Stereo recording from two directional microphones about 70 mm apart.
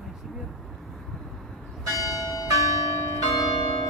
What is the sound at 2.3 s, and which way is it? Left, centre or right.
Change ringing, left.